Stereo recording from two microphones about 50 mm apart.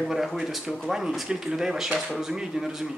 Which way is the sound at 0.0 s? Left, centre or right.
Centre.